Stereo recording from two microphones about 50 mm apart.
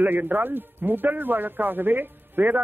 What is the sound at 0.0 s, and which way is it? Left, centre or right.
Speech, right.